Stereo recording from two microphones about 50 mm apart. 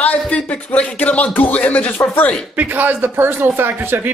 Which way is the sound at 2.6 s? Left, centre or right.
Right.